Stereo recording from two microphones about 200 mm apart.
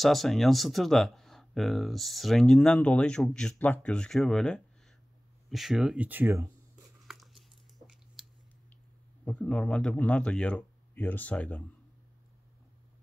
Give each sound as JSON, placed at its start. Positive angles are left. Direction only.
{"t": 0.0, "sound": "speech", "side_deg": 0}
{"t": 7.0, "sound": "a sound", "side_deg": 0}
{"t": 9.2, "sound": "speech", "side_deg": 5}